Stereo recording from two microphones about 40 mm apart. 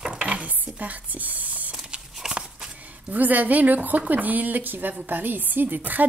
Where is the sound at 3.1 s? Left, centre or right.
Right.